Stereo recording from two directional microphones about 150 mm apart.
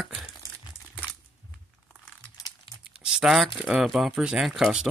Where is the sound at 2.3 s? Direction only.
25° left (ahead or behind).